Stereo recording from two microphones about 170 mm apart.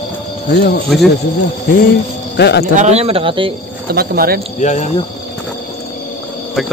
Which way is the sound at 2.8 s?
40° right (ahead or behind).